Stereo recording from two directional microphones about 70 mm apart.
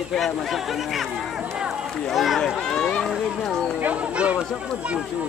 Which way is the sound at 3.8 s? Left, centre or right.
Centre.